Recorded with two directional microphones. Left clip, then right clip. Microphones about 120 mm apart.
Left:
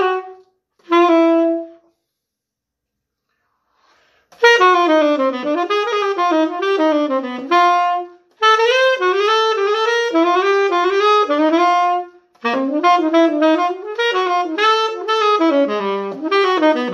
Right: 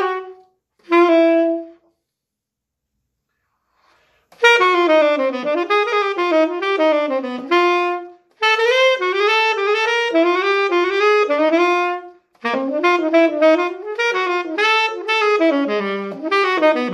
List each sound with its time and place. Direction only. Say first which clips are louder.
0.8 s saxophone: even; 35° left (ahead or behind)
4.4 s saxophone: left 2 dB; 30° left (ahead or behind)